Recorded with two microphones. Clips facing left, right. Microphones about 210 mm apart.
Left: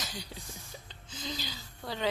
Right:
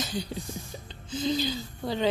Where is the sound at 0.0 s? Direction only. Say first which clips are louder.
Right 10 dB; 25° right (ahead or behind).